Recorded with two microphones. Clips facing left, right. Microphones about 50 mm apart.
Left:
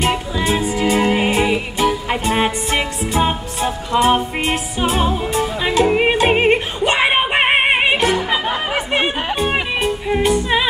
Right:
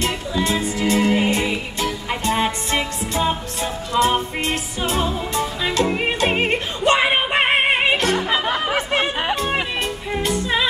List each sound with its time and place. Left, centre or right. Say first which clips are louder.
0.0 s music: left 3 dB; left
5.6 s yodeling: left 7 dB; left
6.8 s music: left 1 dB; left
8.2 s music: left 1 dB; centre
9.3 s music: left 3 dB; left